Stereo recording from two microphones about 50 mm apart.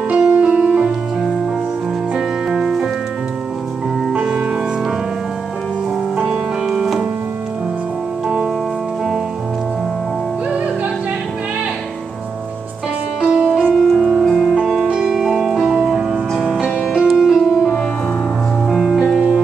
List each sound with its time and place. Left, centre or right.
0.1 s music: right
2.1 s music: centre
4.1 s music: centre
6.1 s music: centre
13.2 s music: centre
18.7 s music: centre